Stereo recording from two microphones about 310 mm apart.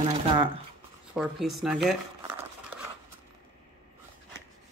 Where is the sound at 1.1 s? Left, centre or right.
Centre.